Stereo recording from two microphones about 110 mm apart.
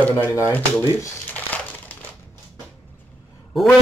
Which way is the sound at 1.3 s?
15° left (ahead or behind).